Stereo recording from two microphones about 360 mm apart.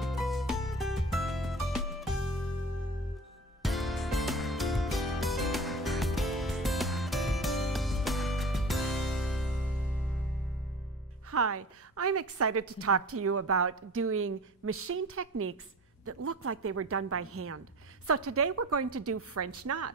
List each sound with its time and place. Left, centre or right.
0.0 s music: centre
3.6 s music: centre
11.2 s a woman's voice: right